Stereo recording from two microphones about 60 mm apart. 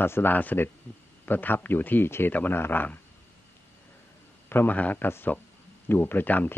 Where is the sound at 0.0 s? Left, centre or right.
Left.